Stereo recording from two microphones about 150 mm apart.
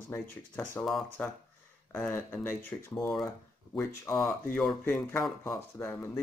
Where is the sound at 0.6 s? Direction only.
Centre (ahead or behind).